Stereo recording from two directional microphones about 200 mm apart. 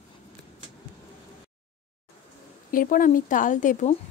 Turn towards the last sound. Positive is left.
turn(degrees=40)  # may be behind; listen again after turning